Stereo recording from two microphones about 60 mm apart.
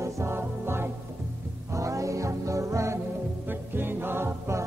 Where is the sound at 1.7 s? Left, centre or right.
Right.